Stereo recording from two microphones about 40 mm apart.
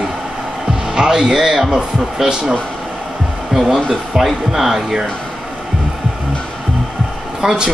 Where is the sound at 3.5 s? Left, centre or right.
Centre.